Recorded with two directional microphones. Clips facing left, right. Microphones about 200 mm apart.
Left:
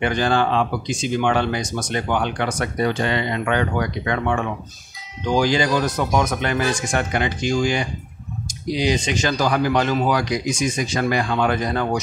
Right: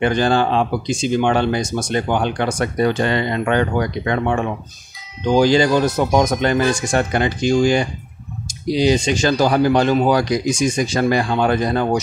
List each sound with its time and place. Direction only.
0.0 s speech: 30° right (ahead or behind)